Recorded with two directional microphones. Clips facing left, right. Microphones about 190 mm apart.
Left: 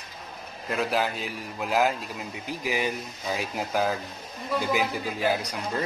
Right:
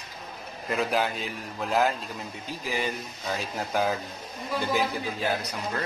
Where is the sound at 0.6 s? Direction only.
Centre (ahead or behind).